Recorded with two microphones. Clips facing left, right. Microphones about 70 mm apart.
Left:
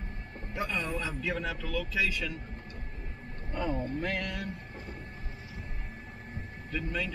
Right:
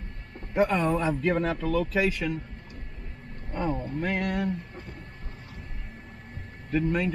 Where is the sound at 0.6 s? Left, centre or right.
Right.